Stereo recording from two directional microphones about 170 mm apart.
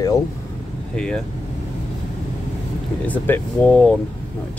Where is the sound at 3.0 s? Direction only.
10° left (ahead or behind).